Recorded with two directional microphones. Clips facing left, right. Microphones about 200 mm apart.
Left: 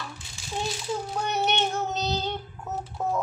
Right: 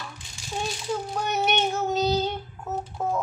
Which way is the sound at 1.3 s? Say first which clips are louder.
Right 2 dB; 5° right (ahead or behind).